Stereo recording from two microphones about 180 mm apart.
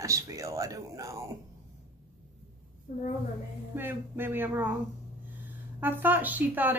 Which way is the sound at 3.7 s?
10° right (ahead or behind).